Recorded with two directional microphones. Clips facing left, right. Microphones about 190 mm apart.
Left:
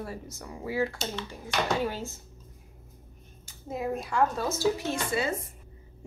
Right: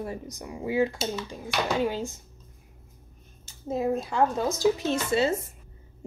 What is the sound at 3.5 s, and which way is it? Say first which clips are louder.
A woman's voice: right 5 dB; 25° right (ahead or behind).